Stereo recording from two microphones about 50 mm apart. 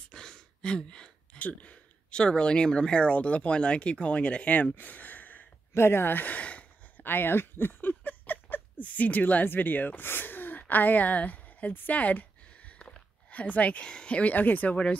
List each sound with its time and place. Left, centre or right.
0.1 s a sound: centre
1.4 s speech: left
5.8 s speech: left
7.0 s a woman's voice: left
12.7 s a sound: left
14.3 s speech: left